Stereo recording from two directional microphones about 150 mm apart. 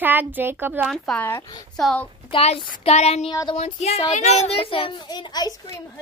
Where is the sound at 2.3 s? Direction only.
40° left (ahead or behind).